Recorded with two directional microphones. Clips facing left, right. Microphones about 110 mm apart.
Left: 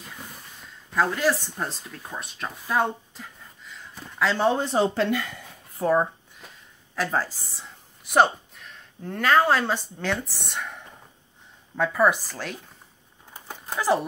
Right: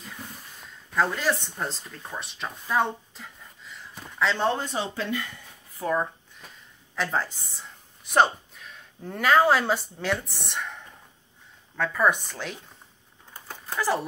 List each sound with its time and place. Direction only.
0.9 s speech: 5° left (ahead or behind)
4.6 s speech: 40° left (ahead or behind)
4.9 s speech: 90° left
7.0 s a woman's voice: 5° left (ahead or behind)
11.9 s speech: 5° left (ahead or behind)
13.3 s a sound: 20° left (ahead or behind)